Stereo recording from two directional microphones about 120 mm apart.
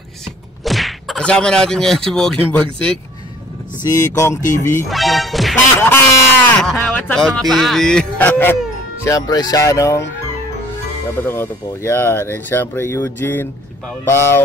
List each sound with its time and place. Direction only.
0.7 s speech: centre (ahead or behind)
3.9 s speech: 25° left (ahead or behind)
4.8 s music: centre (ahead or behind)
5.8 s a sound: 15° left (ahead or behind)
7.2 s speech: 5° left (ahead or behind)
9.0 s speech: 30° left (ahead or behind)
11.2 s speech: 20° left (ahead or behind)